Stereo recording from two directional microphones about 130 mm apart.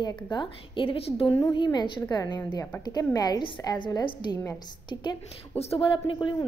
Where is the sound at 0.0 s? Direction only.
35° left (ahead or behind).